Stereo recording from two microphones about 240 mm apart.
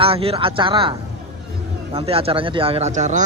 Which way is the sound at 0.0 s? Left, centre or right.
Right.